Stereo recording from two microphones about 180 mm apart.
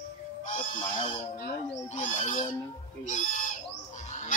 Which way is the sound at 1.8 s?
40° left (ahead or behind).